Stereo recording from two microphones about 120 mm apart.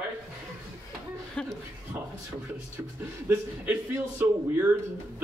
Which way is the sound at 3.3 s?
15° right (ahead or behind).